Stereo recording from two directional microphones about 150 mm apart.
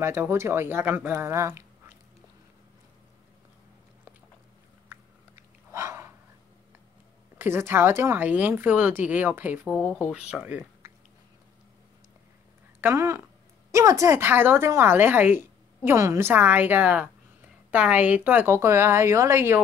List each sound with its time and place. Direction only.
0.0 s a woman's voice: 15° right (ahead or behind)
4.8 s chewing: 20° right (ahead or behind)
7.3 s a woman's voice: 15° right (ahead or behind)
12.8 s a woman's voice: 20° right (ahead or behind)